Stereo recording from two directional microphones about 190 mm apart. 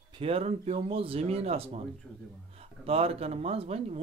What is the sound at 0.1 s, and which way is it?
Speech, 30° right (ahead or behind).